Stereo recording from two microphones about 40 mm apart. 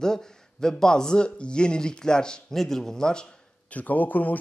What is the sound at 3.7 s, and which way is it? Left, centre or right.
Speech, left.